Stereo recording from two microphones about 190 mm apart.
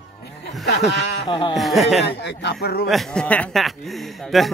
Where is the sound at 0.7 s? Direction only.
60° left (ahead or behind).